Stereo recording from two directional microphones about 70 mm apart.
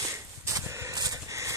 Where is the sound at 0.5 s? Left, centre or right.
Right.